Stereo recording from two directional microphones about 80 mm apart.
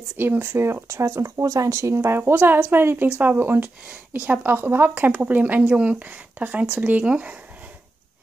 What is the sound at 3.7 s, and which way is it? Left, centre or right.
Speech, centre.